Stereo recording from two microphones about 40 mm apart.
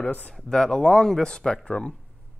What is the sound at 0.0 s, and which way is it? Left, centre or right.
Speech, left.